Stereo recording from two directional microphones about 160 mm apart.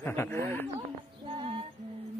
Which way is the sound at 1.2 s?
30° right (ahead or behind).